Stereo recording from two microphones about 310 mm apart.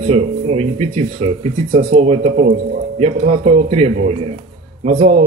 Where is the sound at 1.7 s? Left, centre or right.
Centre.